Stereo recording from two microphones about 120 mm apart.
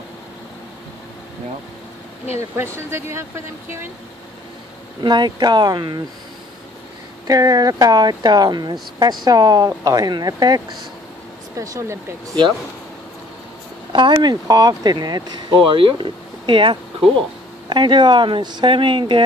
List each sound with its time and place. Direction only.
2.5 s speech: 20° right (ahead or behind)
5.0 s speech: 40° right (ahead or behind)
7.2 s speech: 30° right (ahead or behind)
13.9 s speech: 40° right (ahead or behind)